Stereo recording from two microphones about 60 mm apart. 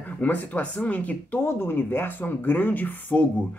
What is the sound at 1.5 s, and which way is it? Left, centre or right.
Speech, left.